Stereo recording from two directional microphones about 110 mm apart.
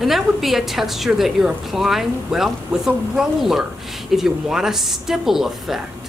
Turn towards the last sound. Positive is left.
turn(degrees=-5)  # may be behind; listen again after turning